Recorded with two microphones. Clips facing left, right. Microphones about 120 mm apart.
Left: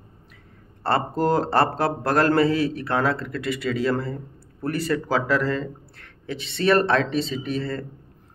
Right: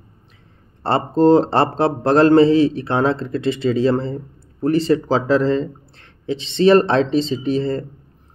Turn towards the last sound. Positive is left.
turn(degrees=-30)  # may be behind; listen again after turning